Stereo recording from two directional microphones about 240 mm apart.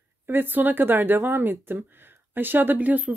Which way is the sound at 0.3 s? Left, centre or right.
Centre.